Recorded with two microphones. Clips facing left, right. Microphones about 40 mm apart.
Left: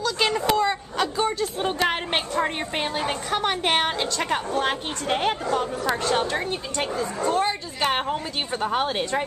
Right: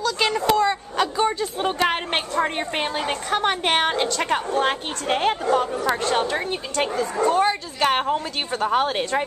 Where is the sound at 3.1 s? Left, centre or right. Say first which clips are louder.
Right 2 dB; centre.